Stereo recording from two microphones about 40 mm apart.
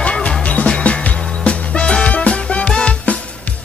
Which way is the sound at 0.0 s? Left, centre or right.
Left.